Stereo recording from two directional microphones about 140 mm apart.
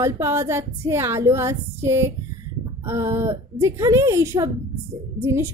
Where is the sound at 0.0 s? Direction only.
20° right (ahead or behind).